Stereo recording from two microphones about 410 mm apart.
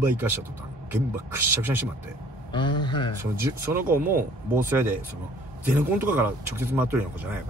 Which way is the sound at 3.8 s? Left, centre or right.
Right.